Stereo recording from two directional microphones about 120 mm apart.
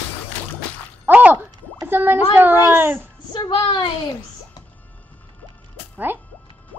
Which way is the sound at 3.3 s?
40° left (ahead or behind).